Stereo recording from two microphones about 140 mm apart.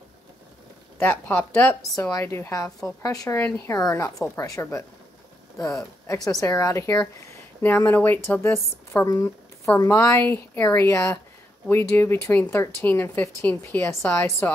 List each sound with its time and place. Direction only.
0.9 s a woman's voice: 15° left (ahead or behind)
6.0 s a woman's voice: 25° left (ahead or behind)